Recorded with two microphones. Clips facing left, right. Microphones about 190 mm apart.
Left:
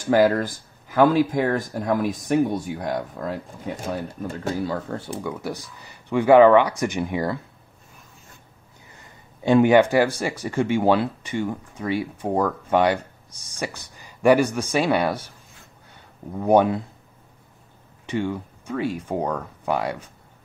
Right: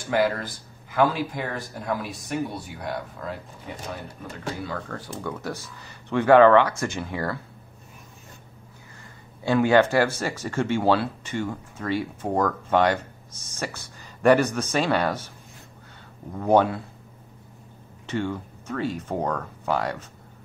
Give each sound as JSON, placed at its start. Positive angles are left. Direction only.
{"t": 0.0, "sound": "speech", "side_deg": 40}
{"t": 4.8, "sound": "speech", "side_deg": 25}
{"t": 5.1, "sound": "speech", "side_deg": 15}
{"t": 9.4, "sound": "speech", "side_deg": 20}
{"t": 16.3, "sound": "speech", "side_deg": 15}
{"t": 18.0, "sound": "speech", "side_deg": 15}